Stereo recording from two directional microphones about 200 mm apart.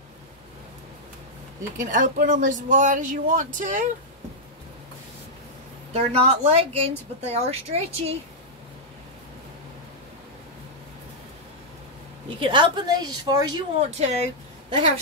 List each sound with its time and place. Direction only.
1.8 s speech: 40° right (ahead or behind)
5.9 s speech: 30° right (ahead or behind)
12.4 s a woman's voice: 25° right (ahead or behind)
13.7 s speech: 35° right (ahead or behind)